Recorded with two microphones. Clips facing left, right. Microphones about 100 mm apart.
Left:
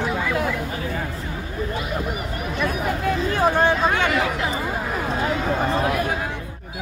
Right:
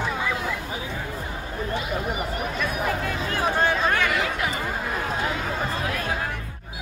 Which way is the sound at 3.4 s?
25° left (ahead or behind).